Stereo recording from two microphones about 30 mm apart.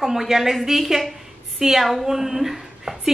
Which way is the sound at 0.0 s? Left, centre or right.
Centre.